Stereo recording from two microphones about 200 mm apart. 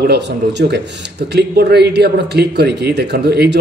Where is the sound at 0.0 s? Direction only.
55° right (ahead or behind).